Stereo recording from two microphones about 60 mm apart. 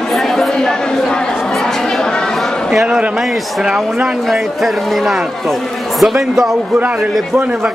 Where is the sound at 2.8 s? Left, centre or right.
Centre.